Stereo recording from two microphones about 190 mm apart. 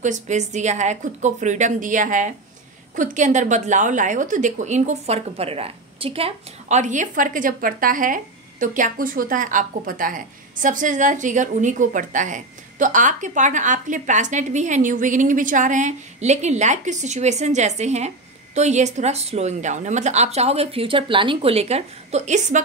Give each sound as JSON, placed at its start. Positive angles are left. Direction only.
{"t": 0.0, "sound": "a woman's voice", "side_deg": -40}